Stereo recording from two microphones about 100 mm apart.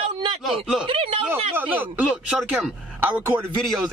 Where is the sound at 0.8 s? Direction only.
75° right (ahead or behind).